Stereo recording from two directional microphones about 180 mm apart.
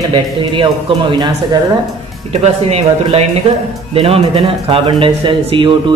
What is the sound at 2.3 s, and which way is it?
A man's voice, 35° right (ahead or behind).